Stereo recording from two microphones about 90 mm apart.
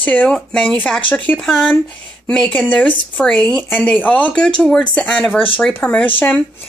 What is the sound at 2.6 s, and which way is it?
Speech, 15° left (ahead or behind).